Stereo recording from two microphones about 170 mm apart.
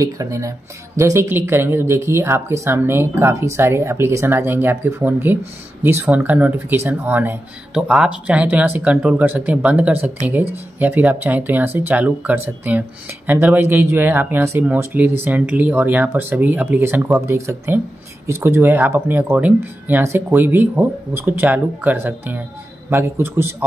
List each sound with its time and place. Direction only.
0.0 s speech: 20° right (ahead or behind)